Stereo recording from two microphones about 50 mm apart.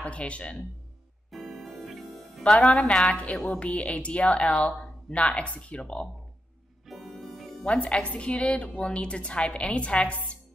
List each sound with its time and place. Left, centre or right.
0.0 s speech: left
1.3 s music: centre
2.9 s a woman's voice: centre
3.5 s speech: left
7.2 s music: centre
7.6 s speech: left